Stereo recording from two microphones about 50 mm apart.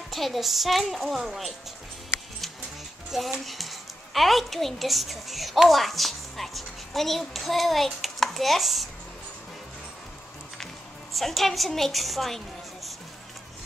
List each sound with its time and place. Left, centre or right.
0.1 s a child's voice: centre
3.1 s a woman's voice: centre
11.1 s a child's voice: centre